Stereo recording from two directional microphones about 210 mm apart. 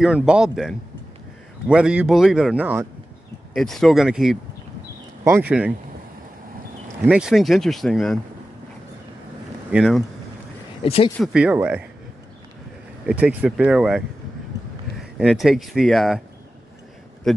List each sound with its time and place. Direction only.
0.0 s speech: 5° right (ahead or behind)
7.0 s speech: 5° right (ahead or behind)
9.7 s speech: 5° right (ahead or behind)
10.8 s speech: 25° left (ahead or behind)
11.3 s speech: 5° right (ahead or behind)
13.0 s speech: 5° right (ahead or behind)